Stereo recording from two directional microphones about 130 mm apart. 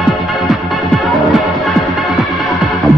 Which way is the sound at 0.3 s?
Centre (ahead or behind).